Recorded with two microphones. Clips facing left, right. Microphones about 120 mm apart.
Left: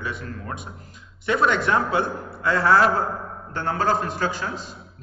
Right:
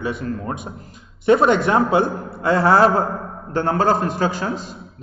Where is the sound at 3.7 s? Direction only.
50° right (ahead or behind).